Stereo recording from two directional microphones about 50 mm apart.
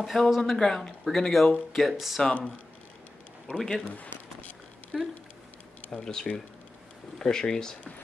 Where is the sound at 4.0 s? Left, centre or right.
Left.